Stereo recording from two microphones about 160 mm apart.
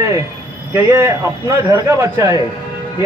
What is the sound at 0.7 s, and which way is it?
A man's voice, 15° right (ahead or behind).